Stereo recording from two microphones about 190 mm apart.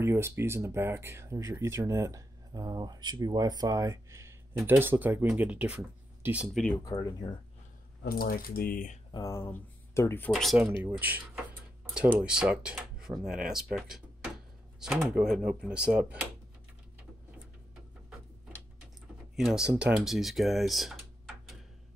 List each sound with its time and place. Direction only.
0.0 s speech: 15° right (ahead or behind)
6.8 s speech: 20° left (ahead or behind)
8.0 s speech: 50° left (ahead or behind)
9.1 s speech: 15° left (ahead or behind); by 10.7 s centre (ahead or behind)
10.8 s a sound: 10° right (ahead or behind)
12.2 s speech: 5° right (ahead or behind)
19.3 s speech: 5° right (ahead or behind)